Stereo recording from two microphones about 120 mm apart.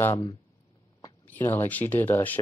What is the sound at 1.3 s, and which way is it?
Speech, 15° left (ahead or behind).